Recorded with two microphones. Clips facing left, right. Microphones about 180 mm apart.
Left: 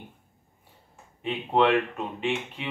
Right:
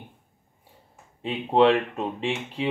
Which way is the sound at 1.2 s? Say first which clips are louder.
Right 4 dB; 30° right (ahead or behind).